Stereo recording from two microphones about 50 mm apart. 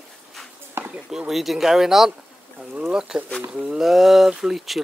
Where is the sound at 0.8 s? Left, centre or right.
Right.